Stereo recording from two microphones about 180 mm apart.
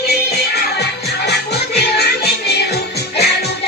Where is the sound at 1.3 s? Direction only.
65° left (ahead or behind).